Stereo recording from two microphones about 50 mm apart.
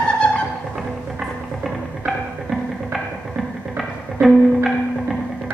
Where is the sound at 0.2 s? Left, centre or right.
Centre.